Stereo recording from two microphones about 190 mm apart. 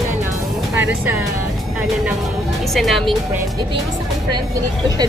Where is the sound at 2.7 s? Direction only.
Centre (ahead or behind).